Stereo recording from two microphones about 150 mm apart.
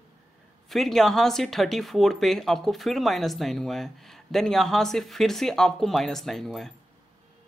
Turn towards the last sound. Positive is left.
turn(degrees=0)  # may be behind; listen again after turning